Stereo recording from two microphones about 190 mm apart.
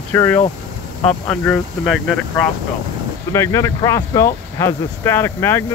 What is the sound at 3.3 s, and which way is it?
Speech, 15° left (ahead or behind).